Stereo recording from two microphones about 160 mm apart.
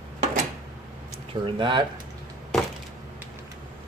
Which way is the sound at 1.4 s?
30° right (ahead or behind).